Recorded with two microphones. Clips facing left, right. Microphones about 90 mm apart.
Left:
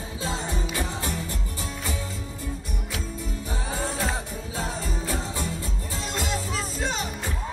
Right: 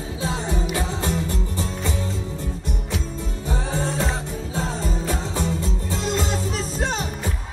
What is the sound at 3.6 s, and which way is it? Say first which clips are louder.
Music: right 4 dB; 25° right (ahead or behind).